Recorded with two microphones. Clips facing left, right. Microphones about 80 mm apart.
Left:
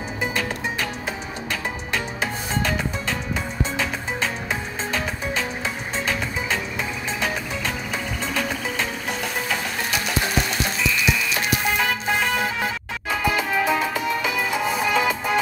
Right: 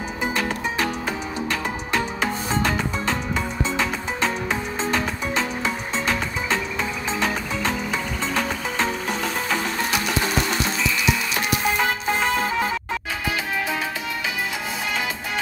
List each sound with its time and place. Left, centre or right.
1.5 s music: right
7.2 s music: right
11.8 s music: right